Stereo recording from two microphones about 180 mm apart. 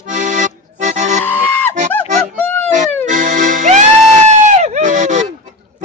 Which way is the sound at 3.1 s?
45° right (ahead or behind).